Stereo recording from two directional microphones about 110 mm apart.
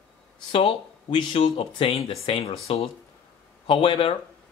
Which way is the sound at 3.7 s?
55° left (ahead or behind).